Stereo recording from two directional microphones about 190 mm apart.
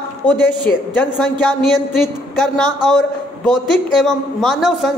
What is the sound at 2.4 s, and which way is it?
A man's voice, 5° left (ahead or behind).